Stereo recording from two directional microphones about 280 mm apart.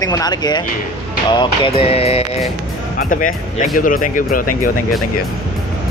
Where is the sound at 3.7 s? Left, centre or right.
Left.